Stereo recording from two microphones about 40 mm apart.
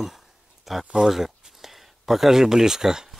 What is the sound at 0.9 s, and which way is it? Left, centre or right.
Speech, centre.